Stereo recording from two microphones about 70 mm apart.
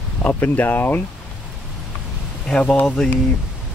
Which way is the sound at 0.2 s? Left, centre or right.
Left.